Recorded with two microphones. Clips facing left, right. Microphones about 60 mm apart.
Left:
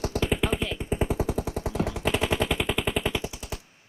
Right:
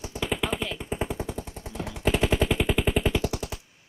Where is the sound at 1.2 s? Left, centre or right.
Left.